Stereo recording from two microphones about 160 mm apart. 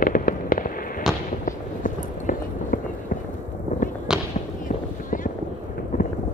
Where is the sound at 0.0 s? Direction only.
60° left (ahead or behind).